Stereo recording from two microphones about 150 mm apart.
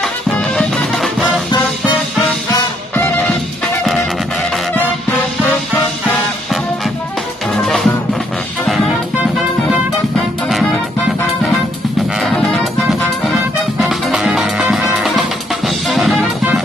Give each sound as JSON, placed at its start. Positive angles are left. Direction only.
{"t": 0.0, "sound": "music", "side_deg": 5}
{"t": 3.0, "sound": "music", "side_deg": 5}
{"t": 7.5, "sound": "music", "side_deg": 0}
{"t": 12.2, "sound": "music", "side_deg": 5}